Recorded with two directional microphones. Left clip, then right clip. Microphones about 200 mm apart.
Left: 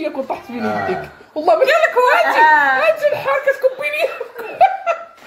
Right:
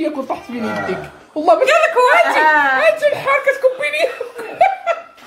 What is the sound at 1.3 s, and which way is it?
Speech, 15° left (ahead or behind).